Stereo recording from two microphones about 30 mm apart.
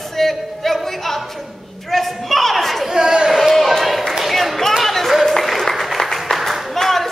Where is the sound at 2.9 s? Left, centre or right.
Right.